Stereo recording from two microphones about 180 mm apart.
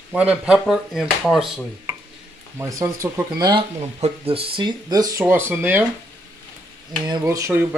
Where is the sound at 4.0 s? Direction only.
30° right (ahead or behind); by 5.8 s 10° right (ahead or behind).